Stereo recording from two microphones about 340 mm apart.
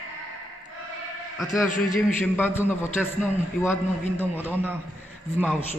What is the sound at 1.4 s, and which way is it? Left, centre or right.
A man's voice, centre.